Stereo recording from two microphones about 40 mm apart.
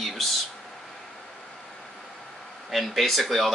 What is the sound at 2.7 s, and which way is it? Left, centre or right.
Speech, centre.